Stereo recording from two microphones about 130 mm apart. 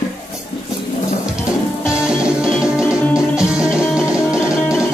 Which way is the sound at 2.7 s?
5° right (ahead or behind).